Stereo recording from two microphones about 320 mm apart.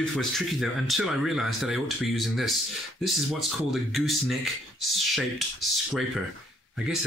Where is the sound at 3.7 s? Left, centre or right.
Centre.